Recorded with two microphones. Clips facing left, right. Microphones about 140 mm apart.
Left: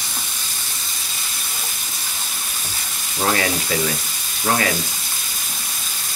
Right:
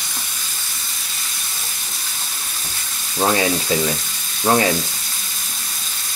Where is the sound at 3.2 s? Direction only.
20° right (ahead or behind).